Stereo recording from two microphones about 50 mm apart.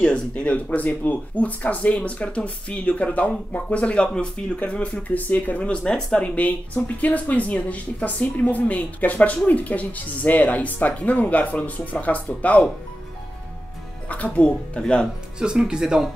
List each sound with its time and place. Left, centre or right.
0.3 s speech: left
5.6 s speech: left
14.0 s speech: left
15.3 s speech: centre